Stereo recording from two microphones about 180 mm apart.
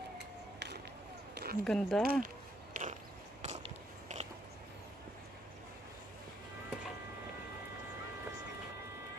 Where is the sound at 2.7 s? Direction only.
45° right (ahead or behind).